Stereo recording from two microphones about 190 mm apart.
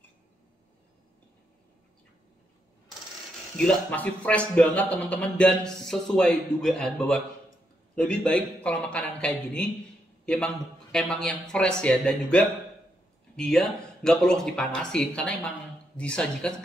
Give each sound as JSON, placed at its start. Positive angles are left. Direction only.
{"t": 3.5, "sound": "a man's voice", "side_deg": 5}